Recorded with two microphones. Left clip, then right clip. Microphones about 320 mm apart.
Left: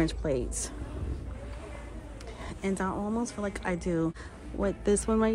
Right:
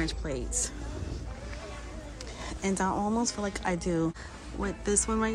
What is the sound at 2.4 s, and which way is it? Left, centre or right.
Speech, centre.